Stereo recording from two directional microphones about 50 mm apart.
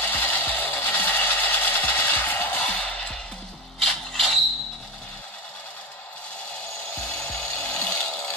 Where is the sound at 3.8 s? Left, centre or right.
Centre.